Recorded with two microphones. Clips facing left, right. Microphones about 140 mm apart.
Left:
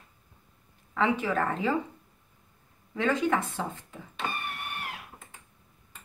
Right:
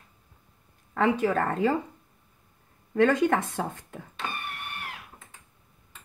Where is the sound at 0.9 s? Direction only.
50° right (ahead or behind).